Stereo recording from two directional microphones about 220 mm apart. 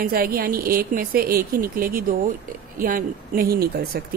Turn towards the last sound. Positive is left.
turn(degrees=-45)  # may be behind; listen again after turning